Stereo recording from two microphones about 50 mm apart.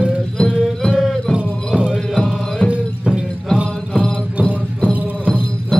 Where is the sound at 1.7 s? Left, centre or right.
Centre.